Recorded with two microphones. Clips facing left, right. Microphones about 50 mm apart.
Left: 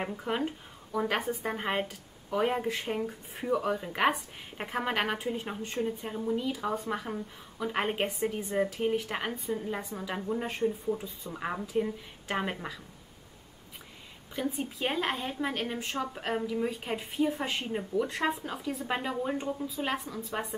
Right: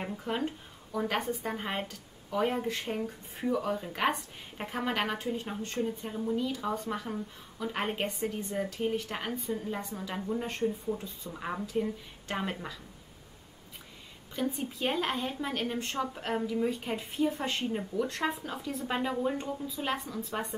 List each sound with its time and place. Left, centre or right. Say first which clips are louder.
0.1 s speech: left 1 dB; centre
5.7 s speech: left 1 dB; centre
14.3 s speech: even; centre